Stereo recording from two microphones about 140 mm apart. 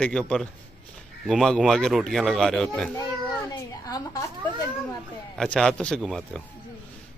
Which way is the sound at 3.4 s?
25° left (ahead or behind).